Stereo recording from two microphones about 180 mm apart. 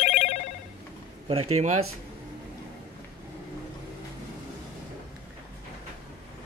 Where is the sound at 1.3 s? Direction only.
35° right (ahead or behind).